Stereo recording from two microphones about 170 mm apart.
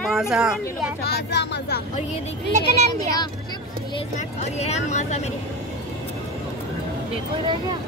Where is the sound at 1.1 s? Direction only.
80° left.